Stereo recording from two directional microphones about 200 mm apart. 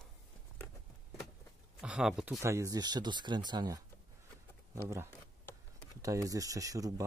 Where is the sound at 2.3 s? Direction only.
15° right (ahead or behind).